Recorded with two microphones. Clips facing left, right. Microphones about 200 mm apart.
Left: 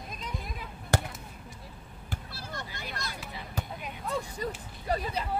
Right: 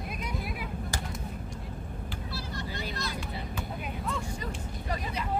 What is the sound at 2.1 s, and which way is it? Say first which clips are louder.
Vehicle: even; 50° left (ahead or behind).